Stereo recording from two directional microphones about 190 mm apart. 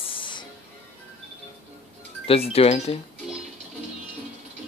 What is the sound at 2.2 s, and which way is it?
Speech, 30° left (ahead or behind).